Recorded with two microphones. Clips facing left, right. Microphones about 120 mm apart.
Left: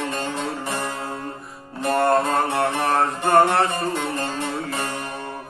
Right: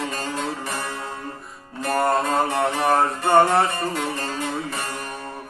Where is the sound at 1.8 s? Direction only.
Centre (ahead or behind).